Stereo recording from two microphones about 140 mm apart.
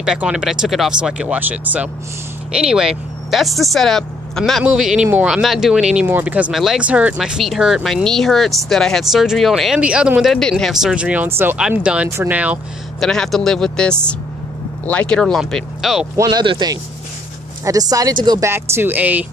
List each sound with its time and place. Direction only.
0.0 s speech: 5° right (ahead or behind)
10.3 s speech: 5° left (ahead or behind)
13.0 s speech: 5° left (ahead or behind)
16.2 s speech: 30° right (ahead or behind)
18.5 s speech: 15° right (ahead or behind)